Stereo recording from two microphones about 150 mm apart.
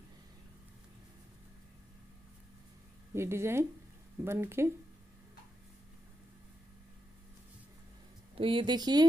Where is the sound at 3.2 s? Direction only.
15° right (ahead or behind).